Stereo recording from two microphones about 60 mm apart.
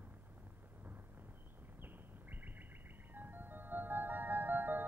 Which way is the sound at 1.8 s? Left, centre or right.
Right.